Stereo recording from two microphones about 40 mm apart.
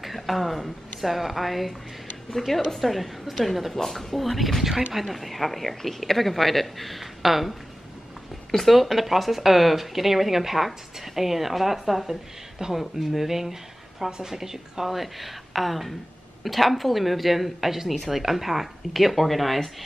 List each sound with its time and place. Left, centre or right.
0.0 s speech: centre
12.5 s speech: centre
13.0 s speech: centre